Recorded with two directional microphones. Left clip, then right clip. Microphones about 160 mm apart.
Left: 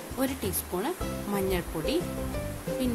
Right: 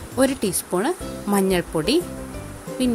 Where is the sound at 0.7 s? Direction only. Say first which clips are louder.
Right 8 dB; 50° right (ahead or behind).